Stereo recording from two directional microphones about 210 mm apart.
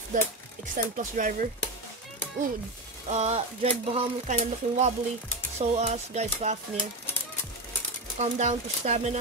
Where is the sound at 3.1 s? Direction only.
30° right (ahead or behind).